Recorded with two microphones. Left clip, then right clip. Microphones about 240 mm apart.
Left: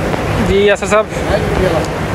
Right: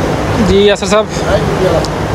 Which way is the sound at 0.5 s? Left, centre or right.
Centre.